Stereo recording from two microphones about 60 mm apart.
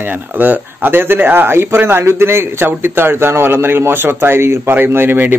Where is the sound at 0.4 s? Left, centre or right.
Right.